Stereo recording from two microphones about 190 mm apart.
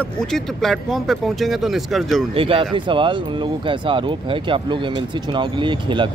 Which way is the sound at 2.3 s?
30° right (ahead or behind).